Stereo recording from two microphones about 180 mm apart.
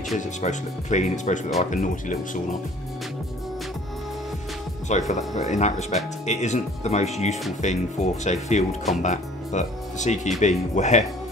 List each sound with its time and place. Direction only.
0.2 s speech: 40° left (ahead or behind)
4.8 s speech: 40° left (ahead or behind)